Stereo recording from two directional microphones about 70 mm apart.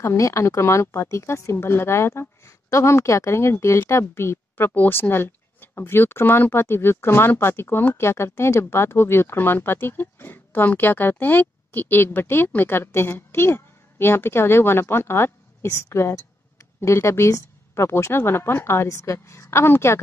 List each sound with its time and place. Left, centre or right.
0.0 s speech: left